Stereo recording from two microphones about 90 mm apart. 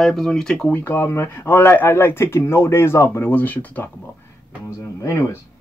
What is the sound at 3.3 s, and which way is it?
Speech, 20° left (ahead or behind).